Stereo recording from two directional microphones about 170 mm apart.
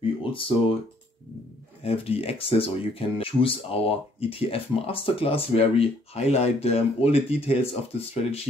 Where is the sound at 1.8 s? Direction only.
35° left (ahead or behind).